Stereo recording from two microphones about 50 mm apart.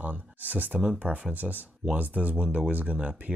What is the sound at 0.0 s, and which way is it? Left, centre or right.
Speech, right.